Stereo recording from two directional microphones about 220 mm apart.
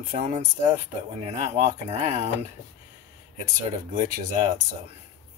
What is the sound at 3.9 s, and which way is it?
Speech, 35° right (ahead or behind).